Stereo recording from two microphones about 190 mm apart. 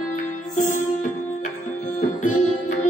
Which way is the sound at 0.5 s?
40° left (ahead or behind).